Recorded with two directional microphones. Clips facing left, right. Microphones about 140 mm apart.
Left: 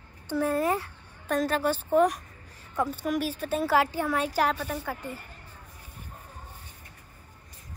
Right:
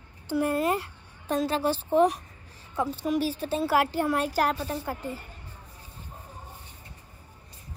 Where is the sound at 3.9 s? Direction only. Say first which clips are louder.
Right 1 dB; 10° right (ahead or behind).